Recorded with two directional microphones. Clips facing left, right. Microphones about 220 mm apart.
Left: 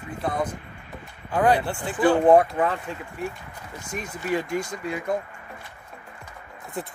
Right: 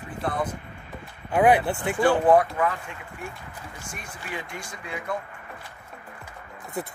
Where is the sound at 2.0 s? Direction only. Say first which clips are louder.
Left 3 dB; 25° left (ahead or behind).